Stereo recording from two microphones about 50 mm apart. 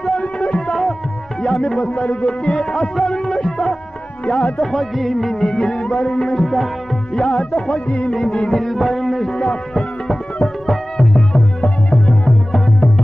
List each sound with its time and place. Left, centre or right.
0.5 s music: centre
2.0 s music: centre
4.6 s music: centre
5.9 s music: left
6.2 s music: centre
7.2 s music: centre
8.1 s music: centre